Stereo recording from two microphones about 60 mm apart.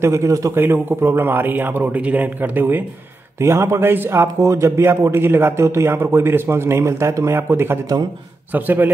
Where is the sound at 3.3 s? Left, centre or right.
Right.